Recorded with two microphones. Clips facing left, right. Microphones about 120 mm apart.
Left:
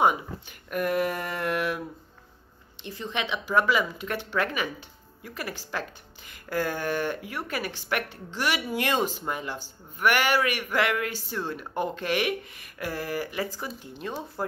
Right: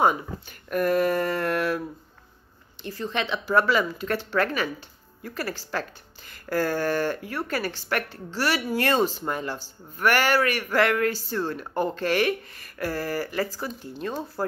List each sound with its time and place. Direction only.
0.0 s speech: 15° left (ahead or behind)
2.8 s speech: 20° left (ahead or behind)